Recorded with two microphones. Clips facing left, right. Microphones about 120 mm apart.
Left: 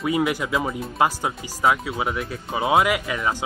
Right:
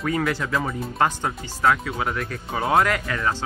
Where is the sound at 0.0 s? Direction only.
10° left (ahead or behind).